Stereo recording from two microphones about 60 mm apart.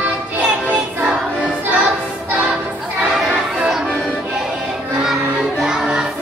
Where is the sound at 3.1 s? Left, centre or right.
Centre.